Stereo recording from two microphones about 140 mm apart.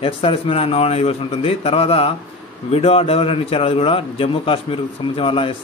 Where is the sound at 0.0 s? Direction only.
40° left (ahead or behind).